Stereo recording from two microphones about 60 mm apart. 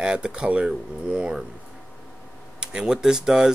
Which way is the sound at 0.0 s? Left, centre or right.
Centre.